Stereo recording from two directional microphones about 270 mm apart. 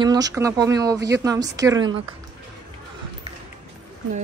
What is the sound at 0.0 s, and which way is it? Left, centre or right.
Speech, centre.